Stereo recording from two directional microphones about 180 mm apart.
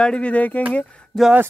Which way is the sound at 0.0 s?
5° left (ahead or behind).